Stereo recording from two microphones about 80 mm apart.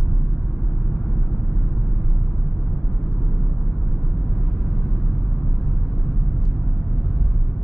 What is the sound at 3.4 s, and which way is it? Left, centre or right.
Vehicle, centre.